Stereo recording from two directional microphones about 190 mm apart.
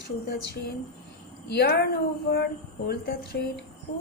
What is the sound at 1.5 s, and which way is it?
Speech, 55° left (ahead or behind).